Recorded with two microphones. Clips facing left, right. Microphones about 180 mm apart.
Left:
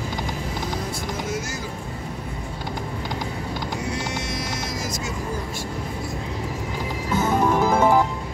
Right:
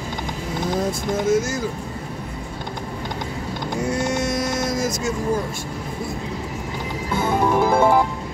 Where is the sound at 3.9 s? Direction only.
50° right (ahead or behind).